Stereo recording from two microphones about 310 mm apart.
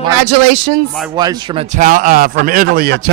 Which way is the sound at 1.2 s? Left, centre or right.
Centre.